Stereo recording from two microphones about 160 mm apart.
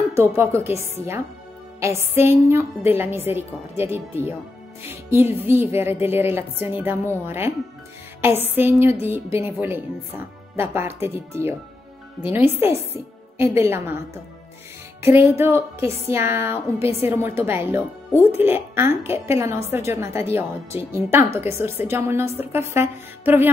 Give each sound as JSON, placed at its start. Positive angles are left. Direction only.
{"t": 0.1, "sound": "a woman's voice", "side_deg": -15}
{"t": 15.0, "sound": "a woman's voice", "side_deg": -15}